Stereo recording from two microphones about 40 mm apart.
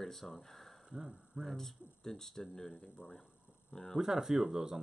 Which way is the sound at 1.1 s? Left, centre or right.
Centre.